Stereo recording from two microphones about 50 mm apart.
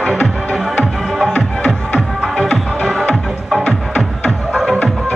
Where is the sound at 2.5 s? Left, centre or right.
Centre.